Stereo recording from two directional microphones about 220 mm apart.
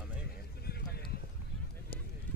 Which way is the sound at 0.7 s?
45° left (ahead or behind).